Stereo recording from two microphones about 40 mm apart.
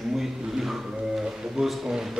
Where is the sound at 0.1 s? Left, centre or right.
Centre.